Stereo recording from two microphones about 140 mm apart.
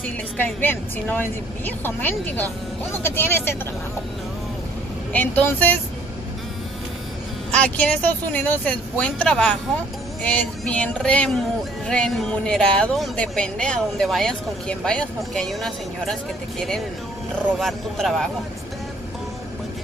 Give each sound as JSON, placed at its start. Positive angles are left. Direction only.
{"t": 0.0, "sound": "a woman's voice", "side_deg": 15}
{"t": 5.1, "sound": "a woman's voice", "side_deg": 10}
{"t": 7.5, "sound": "a woman's voice", "side_deg": 10}